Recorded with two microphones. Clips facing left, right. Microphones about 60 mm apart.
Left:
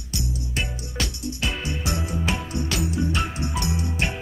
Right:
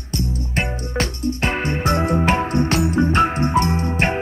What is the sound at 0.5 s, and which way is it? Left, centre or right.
Music, right.